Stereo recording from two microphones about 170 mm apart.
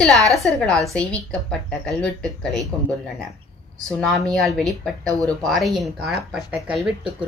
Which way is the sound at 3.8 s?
Centre (ahead or behind).